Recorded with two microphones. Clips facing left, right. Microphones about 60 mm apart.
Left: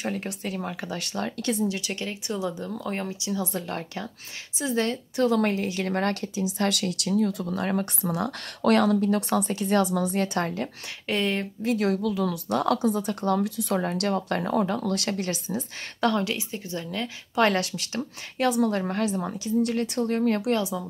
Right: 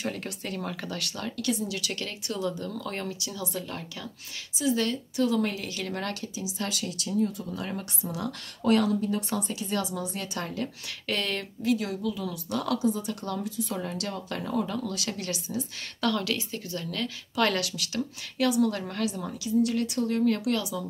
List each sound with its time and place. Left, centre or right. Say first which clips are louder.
0.4 s speech: left 2 dB; centre
0.9 s a woman's voice: left 4 dB; left
1.8 s speech: left 2 dB; left
3.6 s a woman's voice: left 5 dB; left
5.1 s speech: left 5 dB; left
6.7 s speech: left 5 dB; left
11.1 s speech: left 4 dB; centre
11.6 s speech: left 3 dB; left
13.4 s speech: left 5 dB; left
13.7 s speech: left 7 dB; left
15.1 s a woman's voice: left 3 dB; left